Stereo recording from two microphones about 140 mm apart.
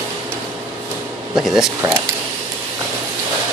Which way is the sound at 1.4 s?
5° right (ahead or behind).